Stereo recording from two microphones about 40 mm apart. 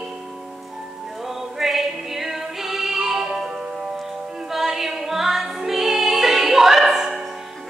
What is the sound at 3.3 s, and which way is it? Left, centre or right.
Music, right.